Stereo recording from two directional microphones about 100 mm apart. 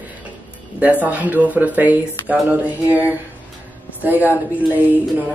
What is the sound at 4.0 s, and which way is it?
Speech, 15° right (ahead or behind).